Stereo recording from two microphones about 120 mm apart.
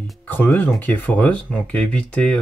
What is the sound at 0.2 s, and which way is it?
Speech, 15° left (ahead or behind).